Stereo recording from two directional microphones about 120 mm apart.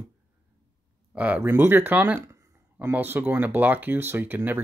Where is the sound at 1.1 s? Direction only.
10° right (ahead or behind).